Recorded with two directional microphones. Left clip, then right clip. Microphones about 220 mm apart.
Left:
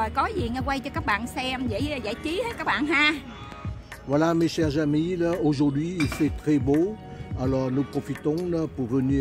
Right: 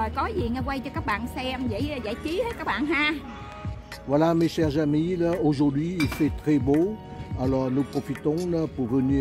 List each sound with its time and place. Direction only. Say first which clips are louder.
0.0 s a woman's voice: left 2 dB; 20° left (ahead or behind)
4.1 s speech: right 1 dB; 10° right (ahead or behind)